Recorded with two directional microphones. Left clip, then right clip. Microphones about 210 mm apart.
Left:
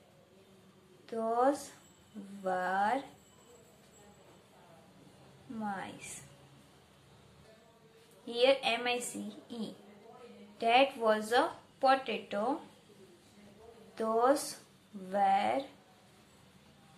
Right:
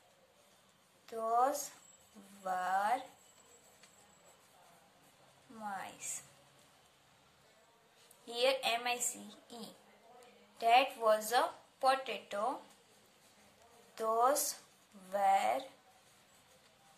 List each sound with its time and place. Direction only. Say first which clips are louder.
1.0 s a woman's voice: left 2 dB; 25° right (ahead or behind)
5.6 s a woman's voice: left 3 dB; 20° right (ahead or behind)
8.3 s a woman's voice: left 4 dB; 25° right (ahead or behind)
10.6 s a woman's voice: left 2 dB; 25° right (ahead or behind)
13.9 s a woman's voice: left 2 dB; 30° right (ahead or behind)